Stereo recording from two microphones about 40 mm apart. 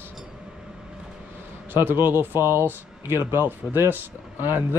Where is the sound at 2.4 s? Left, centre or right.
Right.